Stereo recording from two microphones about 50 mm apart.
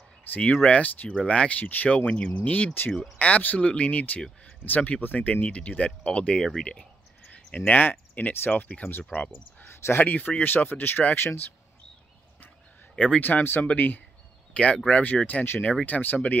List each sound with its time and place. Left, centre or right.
0.4 s speech: left
1.6 s speech: left
1.9 s speech: left
7.3 s speech: left
8.5 s speech: left
9.7 s speech: left
10.0 s speech: left
12.9 s speech: left
13.2 s speech: left
14.5 s speech: left